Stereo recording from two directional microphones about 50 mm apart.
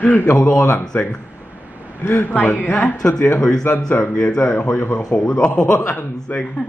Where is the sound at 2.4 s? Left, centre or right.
Left.